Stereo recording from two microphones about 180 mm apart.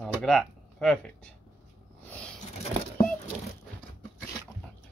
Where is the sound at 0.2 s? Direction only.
Centre (ahead or behind).